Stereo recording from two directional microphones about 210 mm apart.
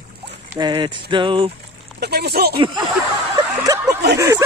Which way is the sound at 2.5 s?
25° right (ahead or behind).